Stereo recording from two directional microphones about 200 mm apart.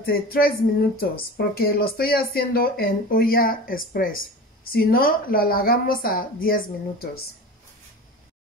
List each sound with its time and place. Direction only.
0.0 s speech: 50° left (ahead or behind)